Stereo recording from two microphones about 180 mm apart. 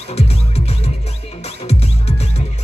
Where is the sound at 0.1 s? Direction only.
35° left (ahead or behind).